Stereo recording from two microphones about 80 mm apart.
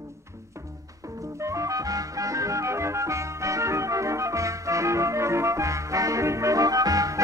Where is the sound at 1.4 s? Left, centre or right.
Right.